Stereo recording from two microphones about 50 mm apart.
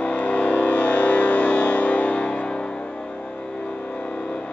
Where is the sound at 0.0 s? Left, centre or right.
Left.